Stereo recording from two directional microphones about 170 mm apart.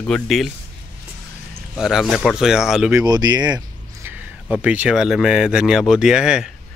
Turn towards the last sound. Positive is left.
turn(degrees=-5)  # may be behind; listen again after turning